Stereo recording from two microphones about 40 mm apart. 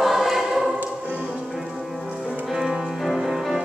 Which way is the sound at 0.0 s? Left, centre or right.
Centre.